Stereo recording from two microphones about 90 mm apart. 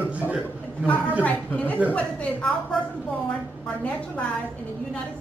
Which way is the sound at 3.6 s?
15° left (ahead or behind).